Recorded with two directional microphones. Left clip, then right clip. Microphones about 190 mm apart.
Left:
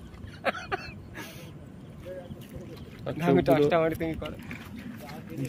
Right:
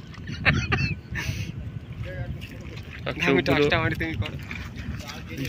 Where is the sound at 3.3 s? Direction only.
60° left (ahead or behind).